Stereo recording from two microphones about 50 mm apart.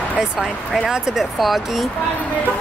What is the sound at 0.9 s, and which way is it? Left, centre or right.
Speech, centre.